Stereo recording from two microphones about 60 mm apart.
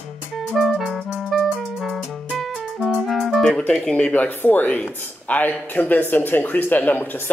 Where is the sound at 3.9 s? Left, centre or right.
Left.